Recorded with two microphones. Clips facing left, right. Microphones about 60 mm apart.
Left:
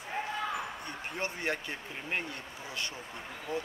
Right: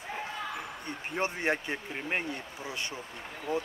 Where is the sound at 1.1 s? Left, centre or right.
Right.